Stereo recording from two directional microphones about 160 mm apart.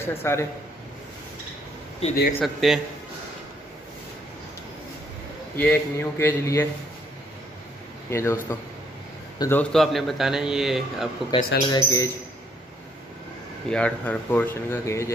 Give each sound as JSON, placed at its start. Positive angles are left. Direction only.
{"t": 0.0, "sound": "speech", "side_deg": 15}
{"t": 2.4, "sound": "a man's voice", "side_deg": 0}
{"t": 5.6, "sound": "speech", "side_deg": 15}
{"t": 8.1, "sound": "a man's voice", "side_deg": 20}
{"t": 11.2, "sound": "speech", "side_deg": 25}
{"t": 13.7, "sound": "speech", "side_deg": 5}